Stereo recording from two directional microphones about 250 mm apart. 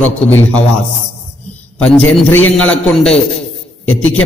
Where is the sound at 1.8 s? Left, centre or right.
Centre.